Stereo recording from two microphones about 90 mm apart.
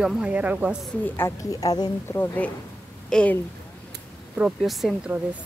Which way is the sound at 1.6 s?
45° left (ahead or behind).